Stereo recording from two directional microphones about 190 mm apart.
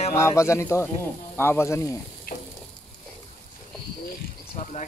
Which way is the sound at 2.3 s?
50° left (ahead or behind).